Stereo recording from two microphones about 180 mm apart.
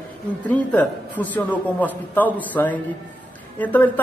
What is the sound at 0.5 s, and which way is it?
A man's voice, 10° left (ahead or behind).